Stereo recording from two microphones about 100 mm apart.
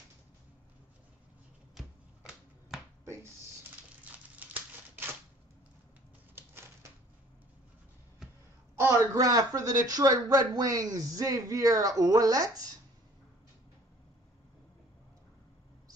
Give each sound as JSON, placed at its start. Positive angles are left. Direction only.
{"t": 1.8, "sound": "a sound", "side_deg": 0}
{"t": 4.0, "sound": "crumpling", "side_deg": -15}
{"t": 6.3, "sound": "typewriter", "side_deg": -25}
{"t": 8.2, "sound": "crow", "side_deg": -5}
{"t": 8.7, "sound": "speech", "side_deg": -30}